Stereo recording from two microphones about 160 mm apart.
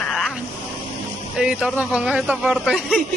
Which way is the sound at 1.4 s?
5° right (ahead or behind).